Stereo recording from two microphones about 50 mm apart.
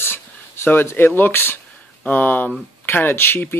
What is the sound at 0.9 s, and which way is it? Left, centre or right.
Speech, left.